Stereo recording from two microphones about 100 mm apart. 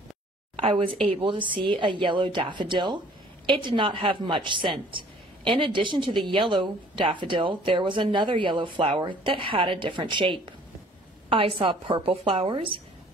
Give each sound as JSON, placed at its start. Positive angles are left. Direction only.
{"t": 1.1, "sound": "a woman's voice", "side_deg": -55}